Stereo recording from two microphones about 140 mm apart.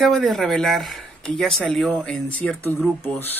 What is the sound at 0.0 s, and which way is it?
Speech, 5° left (ahead or behind).